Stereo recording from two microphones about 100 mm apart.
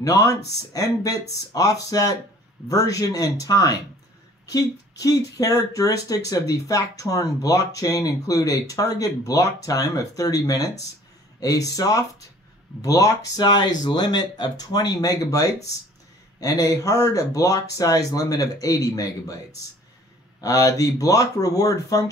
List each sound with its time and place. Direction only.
0.0 s speech: 35° left (ahead or behind)